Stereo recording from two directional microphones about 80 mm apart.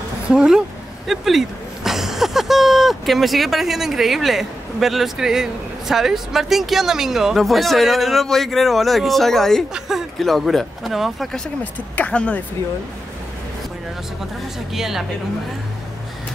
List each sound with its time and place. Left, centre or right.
0.3 s speech: centre
11.9 s speech: centre
14.7 s speech: centre